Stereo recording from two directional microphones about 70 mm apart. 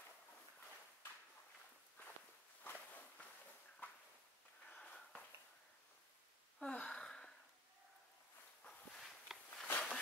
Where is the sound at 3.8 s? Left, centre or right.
Left.